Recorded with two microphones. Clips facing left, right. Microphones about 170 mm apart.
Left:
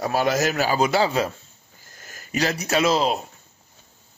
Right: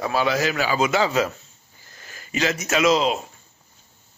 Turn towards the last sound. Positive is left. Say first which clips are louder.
# right 1 dB
turn(degrees=35)  # may be behind; listen again after turning